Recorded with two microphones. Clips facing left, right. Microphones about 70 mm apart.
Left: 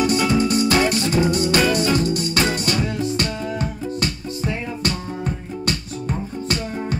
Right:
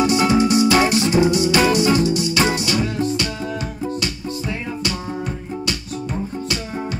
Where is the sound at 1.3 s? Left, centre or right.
Left.